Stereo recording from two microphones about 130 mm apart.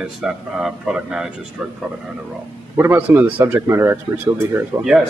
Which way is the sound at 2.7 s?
15° right (ahead or behind).